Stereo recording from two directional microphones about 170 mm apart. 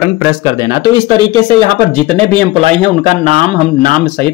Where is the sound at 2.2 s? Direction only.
35° right (ahead or behind).